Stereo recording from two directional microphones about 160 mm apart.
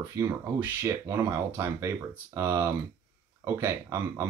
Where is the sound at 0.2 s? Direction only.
15° right (ahead or behind).